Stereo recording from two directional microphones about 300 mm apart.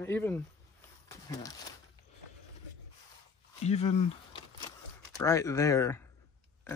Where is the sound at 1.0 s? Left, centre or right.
Centre.